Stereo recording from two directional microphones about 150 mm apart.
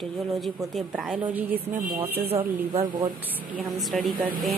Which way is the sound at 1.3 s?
10° right (ahead or behind).